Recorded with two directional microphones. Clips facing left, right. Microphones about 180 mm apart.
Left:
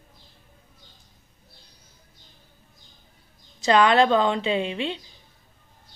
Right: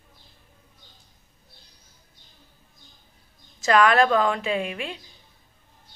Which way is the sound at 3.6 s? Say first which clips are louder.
Left 1 dB; 25° left (ahead or behind).